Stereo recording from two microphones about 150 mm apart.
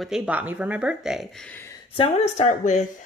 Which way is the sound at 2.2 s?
50° left (ahead or behind).